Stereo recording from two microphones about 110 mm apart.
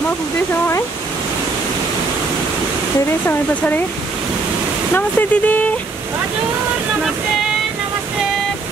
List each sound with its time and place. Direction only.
3.3 s speech: 15° left (ahead or behind)
4.9 s speech: 15° left (ahead or behind)